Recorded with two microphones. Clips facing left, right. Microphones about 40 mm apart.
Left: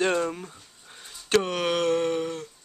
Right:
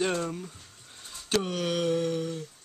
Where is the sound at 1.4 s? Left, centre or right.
Left.